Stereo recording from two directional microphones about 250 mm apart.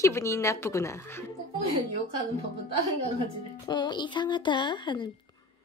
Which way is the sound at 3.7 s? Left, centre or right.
Centre.